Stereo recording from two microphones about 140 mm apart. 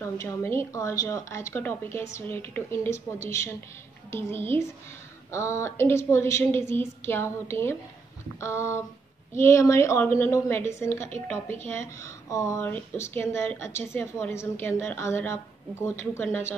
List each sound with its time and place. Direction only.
0.0 s a woman's voice: 20° left (ahead or behind)